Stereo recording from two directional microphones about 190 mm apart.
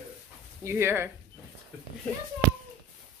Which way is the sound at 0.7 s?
15° right (ahead or behind).